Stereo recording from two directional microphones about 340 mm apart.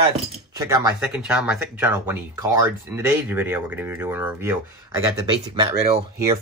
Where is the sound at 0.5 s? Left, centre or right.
Centre.